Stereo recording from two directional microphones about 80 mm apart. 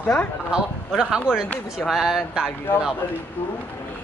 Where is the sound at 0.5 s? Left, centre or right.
Centre.